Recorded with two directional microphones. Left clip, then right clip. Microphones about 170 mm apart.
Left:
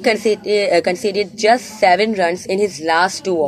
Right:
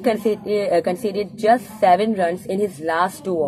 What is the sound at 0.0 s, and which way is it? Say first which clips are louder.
A woman's voice: left 4 dB; 20° left (ahead or behind).